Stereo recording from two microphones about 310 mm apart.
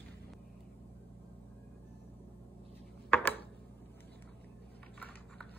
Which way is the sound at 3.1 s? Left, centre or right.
Centre.